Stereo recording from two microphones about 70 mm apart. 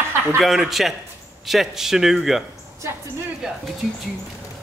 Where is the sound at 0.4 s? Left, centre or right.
Centre.